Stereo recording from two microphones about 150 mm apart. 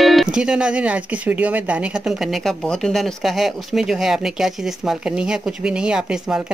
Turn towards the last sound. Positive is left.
turn(degrees=-5)  # may be behind; listen again after turning